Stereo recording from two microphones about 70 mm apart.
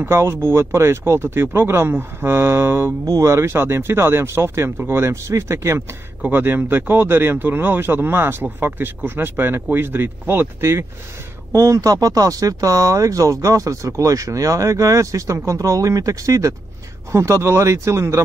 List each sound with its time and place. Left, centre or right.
0.0 s speech: right